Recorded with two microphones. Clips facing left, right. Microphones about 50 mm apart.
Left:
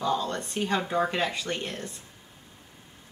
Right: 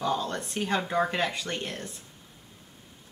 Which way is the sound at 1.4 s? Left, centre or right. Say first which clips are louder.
Left 1 dB; centre.